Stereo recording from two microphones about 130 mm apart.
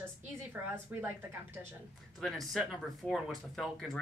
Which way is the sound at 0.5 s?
15° right (ahead or behind).